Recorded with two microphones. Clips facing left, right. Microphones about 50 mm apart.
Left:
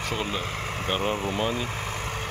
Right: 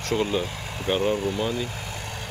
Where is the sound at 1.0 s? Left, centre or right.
Left.